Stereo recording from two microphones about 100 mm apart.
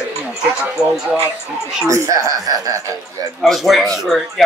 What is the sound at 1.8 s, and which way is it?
Speech, 30° right (ahead or behind).